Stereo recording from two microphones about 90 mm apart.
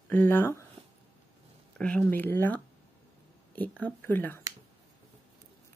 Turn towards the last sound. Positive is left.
turn(degrees=25)  # may be behind; listen again after turning